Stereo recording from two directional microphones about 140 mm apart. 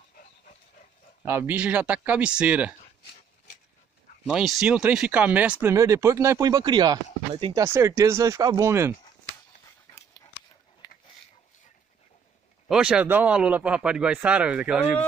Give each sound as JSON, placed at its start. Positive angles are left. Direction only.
{"t": 0.1, "sound": "dog", "side_deg": 65}
{"t": 1.2, "sound": "speech", "side_deg": -15}
{"t": 4.3, "sound": "speech", "side_deg": -5}
{"t": 7.5, "sound": "speech", "side_deg": -20}
{"t": 10.8, "sound": "a sound", "side_deg": 25}
{"t": 12.6, "sound": "speech", "side_deg": -5}